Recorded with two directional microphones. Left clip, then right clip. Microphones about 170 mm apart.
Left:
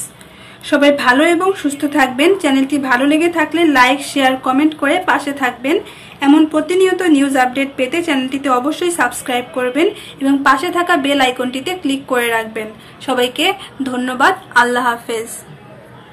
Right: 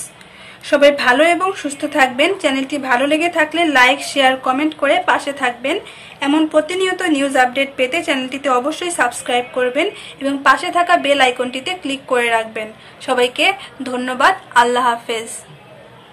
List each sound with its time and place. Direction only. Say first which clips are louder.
0.7 s a woman's voice: even; 10° right (ahead or behind)